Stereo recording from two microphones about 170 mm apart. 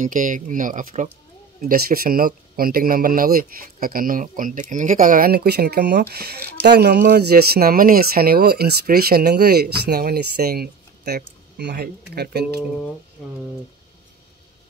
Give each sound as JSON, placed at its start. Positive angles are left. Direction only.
{"t": 0.0, "sound": "speech", "side_deg": -50}